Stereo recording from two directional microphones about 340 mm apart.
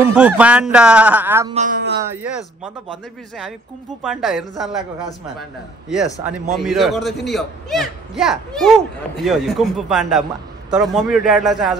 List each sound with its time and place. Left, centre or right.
0.0 s a man's voice: centre
1.5 s speech: right
2.1 s a man's voice: centre
4.0 s a man's voice: centre
6.2 s a man's voice: centre